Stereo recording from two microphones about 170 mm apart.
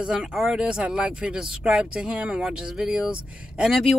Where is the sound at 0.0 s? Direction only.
5° right (ahead or behind).